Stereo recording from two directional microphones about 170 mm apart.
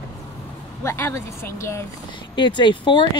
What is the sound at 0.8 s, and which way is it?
Speech, 15° left (ahead or behind).